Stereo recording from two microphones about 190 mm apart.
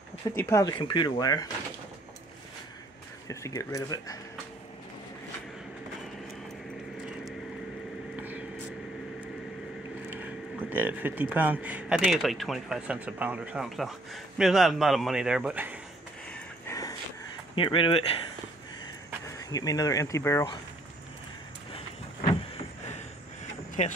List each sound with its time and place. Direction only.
0.4 s speech: 15° left (ahead or behind)
3.3 s speech: 15° left (ahead or behind)
8.2 s a sound: 10° right (ahead or behind)
10.0 s speech: 10° right (ahead or behind)
16.3 s a sound: 15° left (ahead or behind)
17.6 s speech: 25° left (ahead or behind)
19.2 s speech: 20° left (ahead or behind)
21.7 s vehicle: 30° left (ahead or behind)
23.8 s speech: 40° left (ahead or behind)